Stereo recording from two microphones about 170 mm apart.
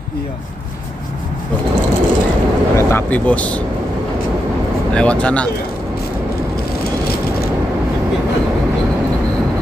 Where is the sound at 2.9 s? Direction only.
10° left (ahead or behind).